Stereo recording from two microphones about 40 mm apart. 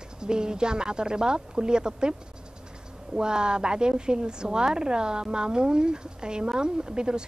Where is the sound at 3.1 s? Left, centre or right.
Right.